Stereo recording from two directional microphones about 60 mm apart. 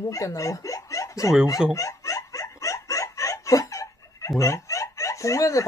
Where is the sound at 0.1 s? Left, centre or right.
Left.